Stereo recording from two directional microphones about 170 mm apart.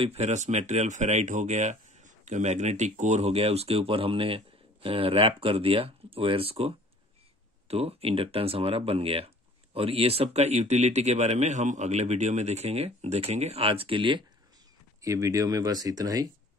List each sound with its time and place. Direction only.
0.0 s speech: 40° right (ahead or behind)
15.0 s speech: 20° right (ahead or behind)